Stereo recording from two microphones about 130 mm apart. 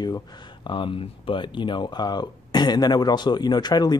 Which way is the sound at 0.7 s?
40° left (ahead or behind).